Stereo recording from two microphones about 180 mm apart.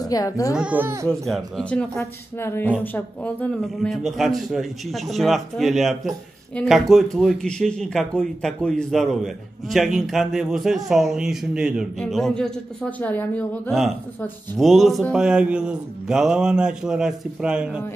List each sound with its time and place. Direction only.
0.0 s speech: 20° left (ahead or behind)
0.6 s speech: 10° right (ahead or behind)
1.0 s speech: 5° left (ahead or behind)